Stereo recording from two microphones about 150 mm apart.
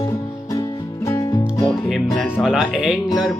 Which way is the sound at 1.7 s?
Centre (ahead or behind).